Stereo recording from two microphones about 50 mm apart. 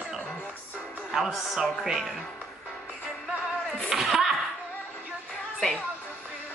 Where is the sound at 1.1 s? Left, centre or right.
Centre.